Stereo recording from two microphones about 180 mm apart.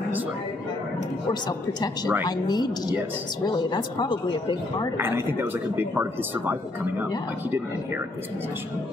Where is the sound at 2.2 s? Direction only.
25° left (ahead or behind).